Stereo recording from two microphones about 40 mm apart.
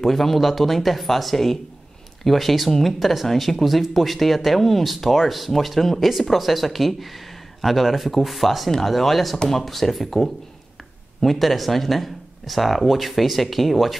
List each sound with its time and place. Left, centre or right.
0.0 s speech: centre